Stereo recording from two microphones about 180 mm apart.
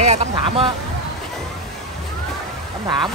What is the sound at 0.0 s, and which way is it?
Speech, 40° right (ahead or behind).